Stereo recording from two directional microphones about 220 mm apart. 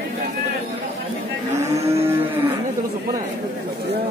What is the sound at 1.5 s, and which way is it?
Cattle, 30° right (ahead or behind).